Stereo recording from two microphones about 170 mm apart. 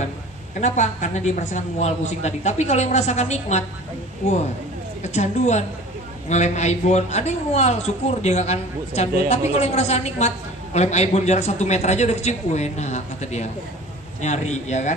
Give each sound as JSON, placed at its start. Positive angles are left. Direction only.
{"t": 0.6, "sound": "a woman's voice", "side_deg": 45}
{"t": 5.0, "sound": "a woman's voice", "side_deg": 45}